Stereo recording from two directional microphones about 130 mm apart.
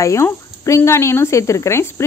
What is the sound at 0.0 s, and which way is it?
Speech, 25° left (ahead or behind).